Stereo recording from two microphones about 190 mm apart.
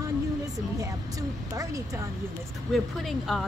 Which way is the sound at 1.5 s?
15° right (ahead or behind).